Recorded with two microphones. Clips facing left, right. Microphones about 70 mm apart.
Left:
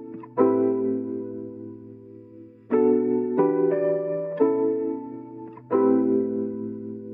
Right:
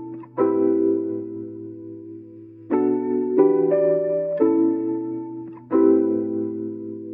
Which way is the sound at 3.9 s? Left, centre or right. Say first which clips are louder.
Right 5 dB; centre.